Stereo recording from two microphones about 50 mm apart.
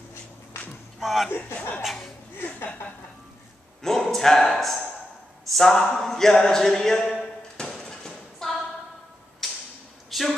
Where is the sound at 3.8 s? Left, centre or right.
Centre.